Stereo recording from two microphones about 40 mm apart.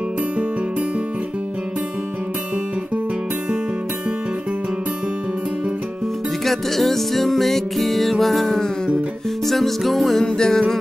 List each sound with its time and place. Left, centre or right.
6.4 s music: centre
10.2 s music: centre